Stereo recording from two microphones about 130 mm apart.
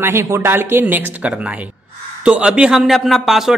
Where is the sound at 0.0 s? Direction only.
20° right (ahead or behind).